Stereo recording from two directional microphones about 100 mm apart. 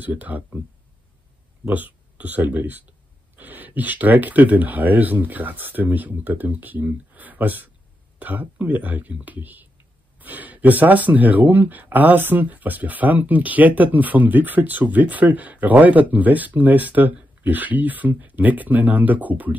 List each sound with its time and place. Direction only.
0.0 s speech: 15° right (ahead or behind)
1.7 s speech: 15° right (ahead or behind)